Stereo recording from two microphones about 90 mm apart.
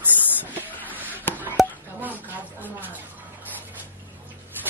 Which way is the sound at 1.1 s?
20° right (ahead or behind).